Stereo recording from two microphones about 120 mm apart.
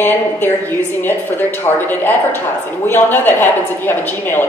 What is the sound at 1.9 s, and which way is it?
A woman's voice, 15° left (ahead or behind).